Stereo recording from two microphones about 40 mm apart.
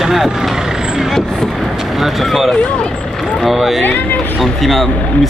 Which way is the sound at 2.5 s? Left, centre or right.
Left.